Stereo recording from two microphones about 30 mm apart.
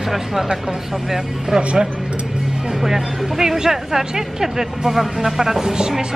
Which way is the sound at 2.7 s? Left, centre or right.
Centre.